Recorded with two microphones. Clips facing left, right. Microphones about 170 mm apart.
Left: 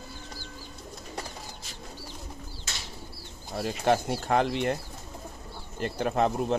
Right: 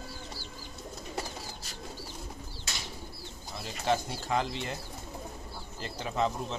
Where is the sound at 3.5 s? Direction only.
55° left (ahead or behind).